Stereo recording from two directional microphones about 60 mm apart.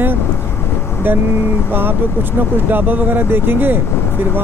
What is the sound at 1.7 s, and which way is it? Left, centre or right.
Speech, right.